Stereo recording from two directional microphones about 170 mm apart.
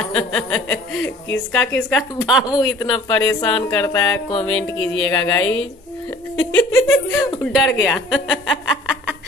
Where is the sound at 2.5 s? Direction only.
30° left (ahead or behind).